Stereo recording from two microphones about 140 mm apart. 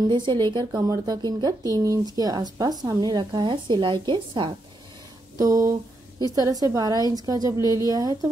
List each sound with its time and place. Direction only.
0.1 s speech: 35° right (ahead or behind)
5.4 s speech: 25° right (ahead or behind)